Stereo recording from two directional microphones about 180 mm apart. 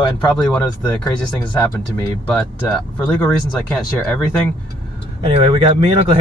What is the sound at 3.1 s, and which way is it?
Speech, 10° left (ahead or behind).